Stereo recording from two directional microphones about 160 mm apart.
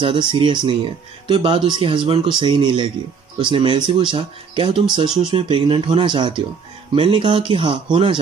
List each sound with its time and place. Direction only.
0.0 s speech: 30° right (ahead or behind)